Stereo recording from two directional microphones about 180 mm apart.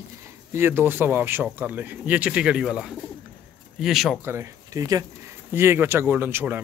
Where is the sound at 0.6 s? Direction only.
10° right (ahead or behind).